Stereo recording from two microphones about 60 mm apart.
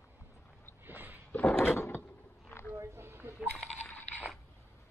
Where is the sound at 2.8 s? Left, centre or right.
Right.